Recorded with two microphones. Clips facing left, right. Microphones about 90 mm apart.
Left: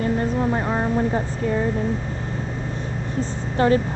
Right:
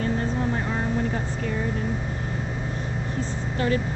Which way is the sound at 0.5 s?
30° left (ahead or behind).